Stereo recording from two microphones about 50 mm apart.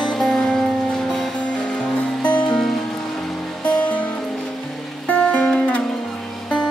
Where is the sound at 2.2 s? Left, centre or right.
Left.